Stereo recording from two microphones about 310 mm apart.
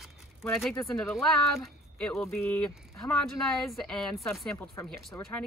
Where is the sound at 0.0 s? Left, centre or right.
Centre.